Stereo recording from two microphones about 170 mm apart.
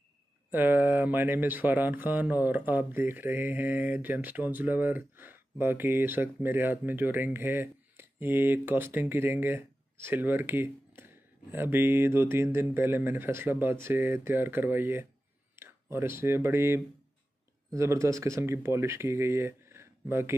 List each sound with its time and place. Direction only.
0.5 s speech: 10° right (ahead or behind)